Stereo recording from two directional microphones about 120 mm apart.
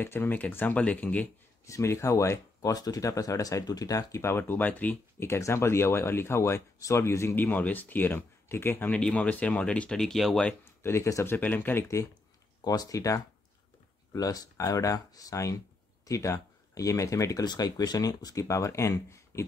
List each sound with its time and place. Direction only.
0.0 s speech: 15° left (ahead or behind)
1.7 s speech: 25° left (ahead or behind); by 10.5 s 5° left (ahead or behind)
10.6 s speech: 20° left (ahead or behind)